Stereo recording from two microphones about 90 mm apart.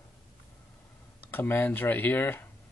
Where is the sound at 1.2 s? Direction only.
25° left (ahead or behind).